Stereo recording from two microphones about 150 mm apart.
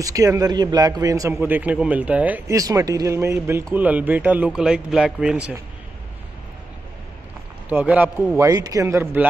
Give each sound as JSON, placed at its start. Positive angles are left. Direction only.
{"t": 0.0, "sound": "a man's voice", "side_deg": -20}
{"t": 2.5, "sound": "a man's voice", "side_deg": -20}
{"t": 7.7, "sound": "a man's voice", "side_deg": -10}
{"t": 8.5, "sound": "a man's voice", "side_deg": -25}